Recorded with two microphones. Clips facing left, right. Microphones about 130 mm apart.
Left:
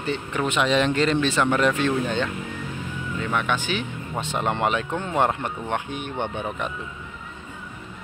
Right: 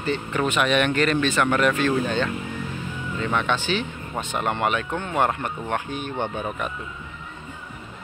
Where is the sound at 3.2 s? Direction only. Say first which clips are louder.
Right 1 dB; 10° left (ahead or behind).